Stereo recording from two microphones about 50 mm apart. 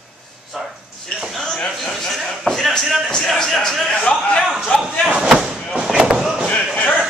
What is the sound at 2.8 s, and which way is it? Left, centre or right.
Speech, centre.